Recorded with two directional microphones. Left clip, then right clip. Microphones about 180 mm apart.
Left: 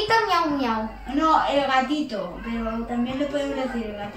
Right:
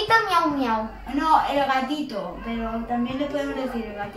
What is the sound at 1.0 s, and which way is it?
A woman's voice, 15° right (ahead or behind).